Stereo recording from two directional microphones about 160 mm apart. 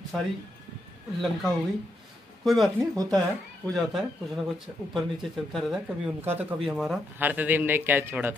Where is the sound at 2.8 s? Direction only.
20° right (ahead or behind).